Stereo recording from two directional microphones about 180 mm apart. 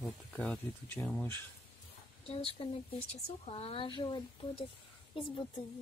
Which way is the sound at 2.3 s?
30° left (ahead or behind).